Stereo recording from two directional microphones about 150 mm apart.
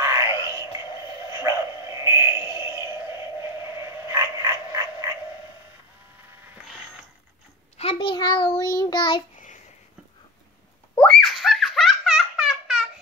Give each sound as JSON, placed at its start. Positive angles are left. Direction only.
{"t": 0.0, "sound": "a sound", "side_deg": -20}
{"t": 1.3, "sound": "bow-wow", "side_deg": -20}
{"t": 4.1, "sound": "frog", "side_deg": -20}
{"t": 7.7, "sound": "a sound", "side_deg": 40}
{"t": 8.7, "sound": "child singing", "side_deg": 30}
{"t": 11.0, "sound": "giggle", "side_deg": 5}